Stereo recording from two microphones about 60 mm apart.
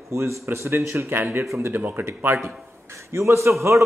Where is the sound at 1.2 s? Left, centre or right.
Right.